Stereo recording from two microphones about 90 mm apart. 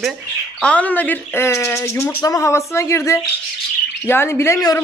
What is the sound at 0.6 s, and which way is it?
A woman's voice, 15° left (ahead or behind).